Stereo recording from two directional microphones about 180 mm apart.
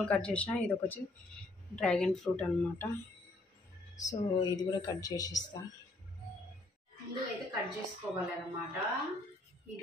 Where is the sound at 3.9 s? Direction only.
20° left (ahead or behind).